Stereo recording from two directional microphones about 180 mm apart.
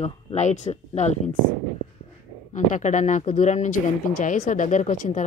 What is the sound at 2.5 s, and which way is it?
Speech, 40° left (ahead or behind).